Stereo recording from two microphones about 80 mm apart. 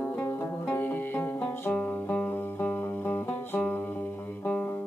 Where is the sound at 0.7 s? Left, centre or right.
Left.